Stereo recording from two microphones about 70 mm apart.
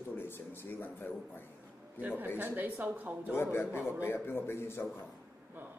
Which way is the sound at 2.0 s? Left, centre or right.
Right.